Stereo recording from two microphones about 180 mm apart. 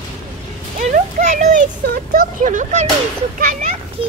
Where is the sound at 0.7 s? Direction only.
45° right (ahead or behind).